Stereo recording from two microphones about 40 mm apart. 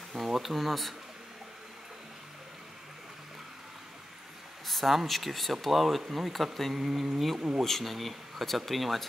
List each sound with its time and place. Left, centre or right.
0.2 s speech: centre
4.6 s speech: centre
7.3 s speech: right
7.6 s speech: centre